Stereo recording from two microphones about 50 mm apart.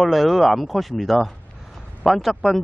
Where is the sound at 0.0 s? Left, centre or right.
Centre.